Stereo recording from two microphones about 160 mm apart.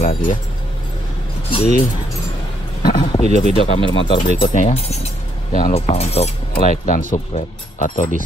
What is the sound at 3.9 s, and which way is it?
Speech, 30° left (ahead or behind).